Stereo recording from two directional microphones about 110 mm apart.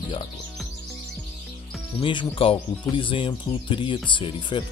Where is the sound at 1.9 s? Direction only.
55° left (ahead or behind).